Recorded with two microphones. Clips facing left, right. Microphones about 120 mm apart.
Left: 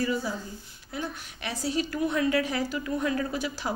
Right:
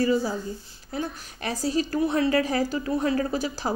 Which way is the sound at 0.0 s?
35° right (ahead or behind).